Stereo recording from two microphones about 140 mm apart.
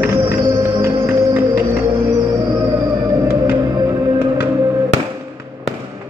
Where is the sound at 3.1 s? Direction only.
20° right (ahead or behind).